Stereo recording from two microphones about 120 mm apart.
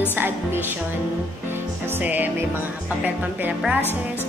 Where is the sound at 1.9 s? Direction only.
15° right (ahead or behind).